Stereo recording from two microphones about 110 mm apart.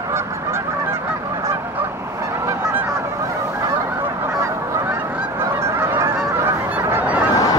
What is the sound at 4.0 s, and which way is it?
Honk, 25° right (ahead or behind).